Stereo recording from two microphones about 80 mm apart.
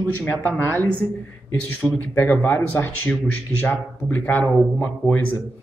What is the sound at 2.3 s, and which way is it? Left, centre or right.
A man's voice, left.